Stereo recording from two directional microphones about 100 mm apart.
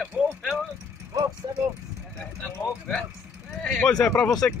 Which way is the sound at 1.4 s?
40° right (ahead or behind).